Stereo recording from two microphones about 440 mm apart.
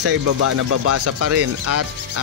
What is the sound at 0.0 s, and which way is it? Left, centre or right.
Speech, right.